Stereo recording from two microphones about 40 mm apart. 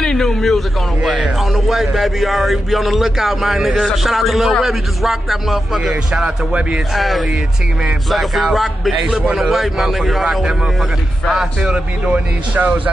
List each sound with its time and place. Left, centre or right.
0.0 s speech: centre
1.0 s speech: centre
6.2 s speech: right
7.0 s speech: centre
11.6 s speech: right
12.5 s speech: right